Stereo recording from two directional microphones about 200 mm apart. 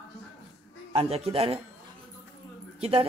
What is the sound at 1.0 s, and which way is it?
Speech, 30° right (ahead or behind).